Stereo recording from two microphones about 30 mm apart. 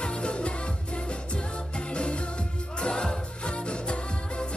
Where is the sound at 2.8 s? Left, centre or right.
Left.